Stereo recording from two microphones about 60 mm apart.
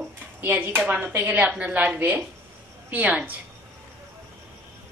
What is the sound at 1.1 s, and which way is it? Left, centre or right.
Speech, right.